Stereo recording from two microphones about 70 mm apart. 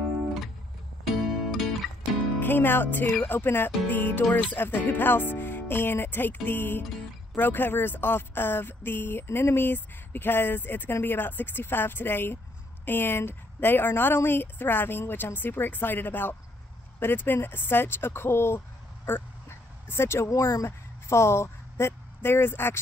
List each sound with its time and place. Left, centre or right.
1.0 s music: centre
2.4 s speech: left
19.9 s speech: left